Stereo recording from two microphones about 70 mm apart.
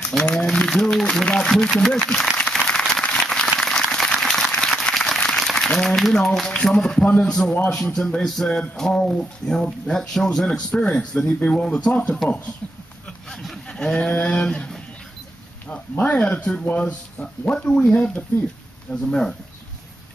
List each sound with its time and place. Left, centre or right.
0.2 s speech: centre
2.3 s a sound: centre
6.5 s speech: centre
13.3 s a sound: centre
13.7 s speech: centre
15.7 s speech: centre
19.0 s speech: centre